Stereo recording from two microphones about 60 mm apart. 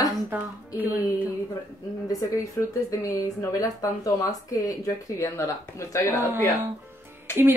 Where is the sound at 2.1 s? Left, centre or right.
Left.